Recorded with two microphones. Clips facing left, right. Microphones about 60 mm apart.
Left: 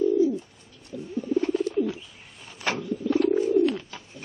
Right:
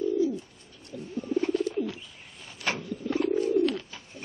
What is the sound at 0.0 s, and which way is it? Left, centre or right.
Bird, left.